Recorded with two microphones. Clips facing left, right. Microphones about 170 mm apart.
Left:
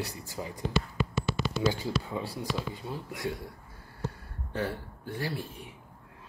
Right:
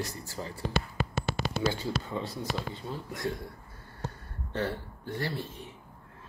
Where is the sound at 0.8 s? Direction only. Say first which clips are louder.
Left 2 dB; 50° right (ahead or behind).